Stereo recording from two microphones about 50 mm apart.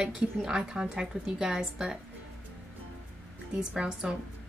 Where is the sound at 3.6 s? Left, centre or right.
Centre.